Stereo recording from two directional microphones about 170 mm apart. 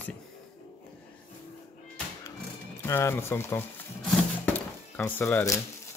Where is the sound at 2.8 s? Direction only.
15° left (ahead or behind).